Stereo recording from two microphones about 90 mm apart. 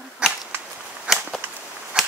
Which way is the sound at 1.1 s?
Centre (ahead or behind).